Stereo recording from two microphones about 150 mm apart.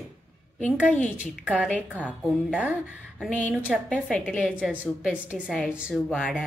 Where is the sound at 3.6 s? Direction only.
5° right (ahead or behind).